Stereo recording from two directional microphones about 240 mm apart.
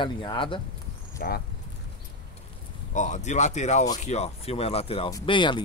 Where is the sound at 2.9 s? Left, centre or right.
Left.